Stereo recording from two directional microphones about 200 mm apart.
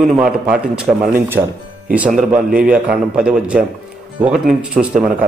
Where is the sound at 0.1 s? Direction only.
5° right (ahead or behind).